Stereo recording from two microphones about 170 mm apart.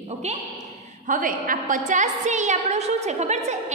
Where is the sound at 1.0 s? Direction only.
50° right (ahead or behind).